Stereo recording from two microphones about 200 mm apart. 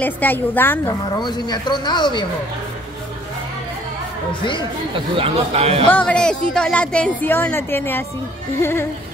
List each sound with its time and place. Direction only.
0.0 s a woman's voice: 10° left (ahead or behind)
4.3 s a woman's voice: 25° left (ahead or behind)
4.9 s speech: 25° right (ahead or behind)
5.9 s a woman's voice: 5° left (ahead or behind)
8.5 s music: 10° left (ahead or behind)